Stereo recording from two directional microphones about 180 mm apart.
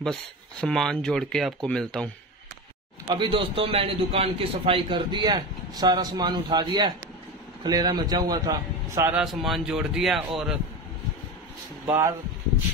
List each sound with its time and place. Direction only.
0.0 s speech: 5° left (ahead or behind)
3.1 s a man's voice: 30° right (ahead or behind)
9.1 s speech: centre (ahead or behind)
11.8 s speech: 15° right (ahead or behind)